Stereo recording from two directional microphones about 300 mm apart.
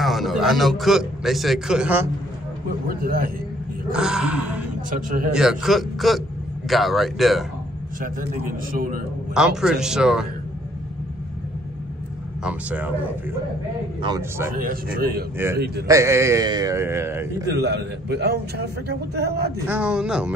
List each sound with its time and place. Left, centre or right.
0.0 s a man's voice: centre
2.9 s a man's voice: right
3.9 s a man's voice: centre
8.0 s a man's voice: right
9.3 s a man's voice: centre
12.4 s a man's voice: centre
14.5 s a man's voice: right
15.3 s a man's voice: centre
17.5 s a man's voice: right
19.7 s a man's voice: centre